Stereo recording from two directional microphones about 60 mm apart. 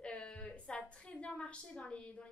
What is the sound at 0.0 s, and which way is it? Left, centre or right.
A woman's voice, centre.